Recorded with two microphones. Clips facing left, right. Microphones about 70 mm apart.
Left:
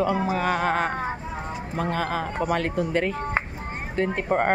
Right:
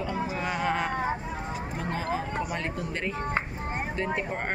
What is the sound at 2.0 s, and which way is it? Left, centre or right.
Speech, left.